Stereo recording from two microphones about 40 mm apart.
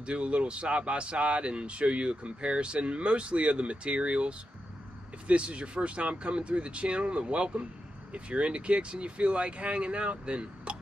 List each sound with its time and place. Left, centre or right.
0.0 s speech: right